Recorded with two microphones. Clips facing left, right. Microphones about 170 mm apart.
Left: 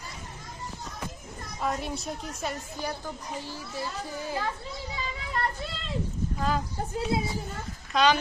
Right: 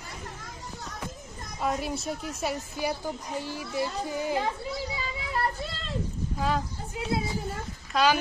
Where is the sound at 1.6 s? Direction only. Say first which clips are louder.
Right 2 dB; centre (ahead or behind).